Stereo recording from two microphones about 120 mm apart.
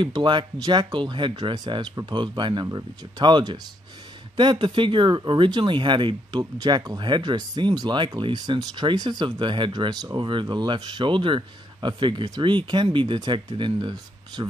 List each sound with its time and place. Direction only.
0.0 s speech: 40° right (ahead or behind)